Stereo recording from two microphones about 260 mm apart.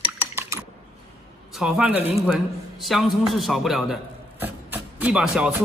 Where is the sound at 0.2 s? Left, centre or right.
Centre.